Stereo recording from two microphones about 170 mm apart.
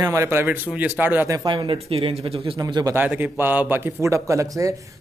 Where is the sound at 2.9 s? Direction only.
10° right (ahead or behind).